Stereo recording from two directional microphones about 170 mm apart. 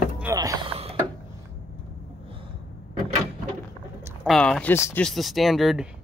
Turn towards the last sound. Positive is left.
turn(degrees=0)  # may be behind; listen again after turning